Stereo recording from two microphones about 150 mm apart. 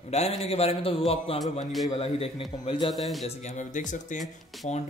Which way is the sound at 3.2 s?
55° left (ahead or behind).